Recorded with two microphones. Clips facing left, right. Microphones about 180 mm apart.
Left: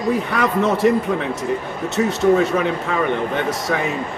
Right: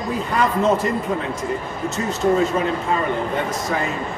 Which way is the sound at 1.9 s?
70° left (ahead or behind).